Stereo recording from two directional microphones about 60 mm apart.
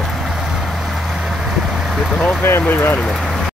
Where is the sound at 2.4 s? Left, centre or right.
Left.